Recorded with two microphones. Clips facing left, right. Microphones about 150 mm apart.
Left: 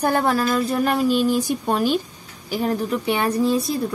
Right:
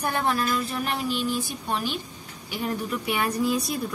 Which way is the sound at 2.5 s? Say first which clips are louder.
Left 7 dB; 35° left (ahead or behind).